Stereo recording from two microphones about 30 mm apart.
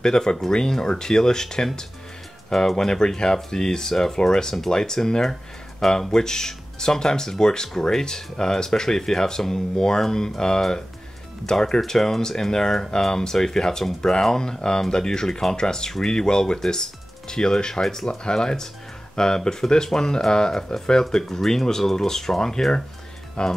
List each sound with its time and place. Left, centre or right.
0.0 s speech: left
2.5 s speech: centre
2.9 s speech: left
23.4 s speech: left